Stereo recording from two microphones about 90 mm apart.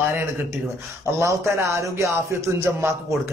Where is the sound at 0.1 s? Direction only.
30° right (ahead or behind).